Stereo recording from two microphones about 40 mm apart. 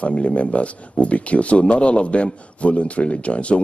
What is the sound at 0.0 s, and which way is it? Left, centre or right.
Speech, left.